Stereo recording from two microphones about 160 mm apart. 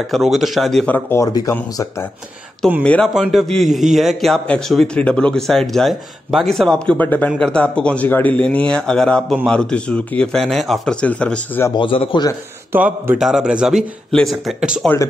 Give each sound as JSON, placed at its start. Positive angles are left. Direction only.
{"t": 0.0, "sound": "a man's voice", "side_deg": 0}
{"t": 2.8, "sound": "a man's voice", "side_deg": 5}
{"t": 11.7, "sound": "a man's voice", "side_deg": 30}
{"t": 12.7, "sound": "a man's voice", "side_deg": -10}